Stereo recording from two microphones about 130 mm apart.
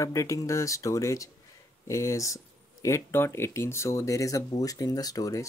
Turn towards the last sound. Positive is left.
turn(degrees=25)  # may be behind; listen again after turning